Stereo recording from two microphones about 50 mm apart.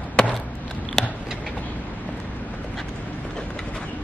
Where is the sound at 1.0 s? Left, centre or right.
Centre.